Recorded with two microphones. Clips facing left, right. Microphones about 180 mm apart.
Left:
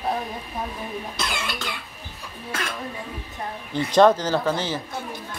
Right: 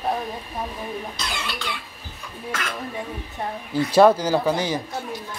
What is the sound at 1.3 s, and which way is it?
Speech, 45° left (ahead or behind).